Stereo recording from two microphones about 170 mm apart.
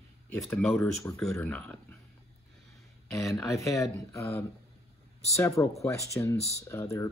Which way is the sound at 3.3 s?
20° left (ahead or behind).